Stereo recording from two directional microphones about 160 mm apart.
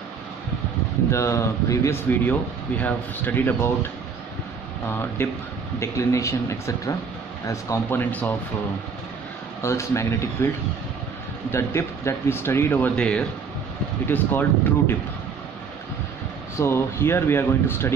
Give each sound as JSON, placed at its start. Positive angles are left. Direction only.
{"t": 1.1, "sound": "speech", "side_deg": 20}
{"t": 4.9, "sound": "speech", "side_deg": 15}
{"t": 9.6, "sound": "speech", "side_deg": 15}
{"t": 11.5, "sound": "speech", "side_deg": 15}
{"t": 16.5, "sound": "speech", "side_deg": 15}